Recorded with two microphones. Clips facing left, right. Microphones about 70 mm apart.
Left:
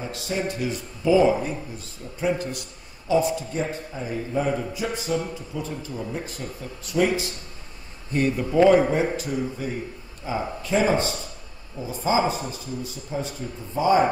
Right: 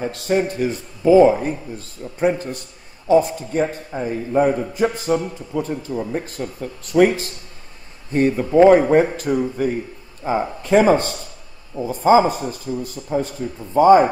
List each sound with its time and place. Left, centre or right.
0.0 s a man's voice: right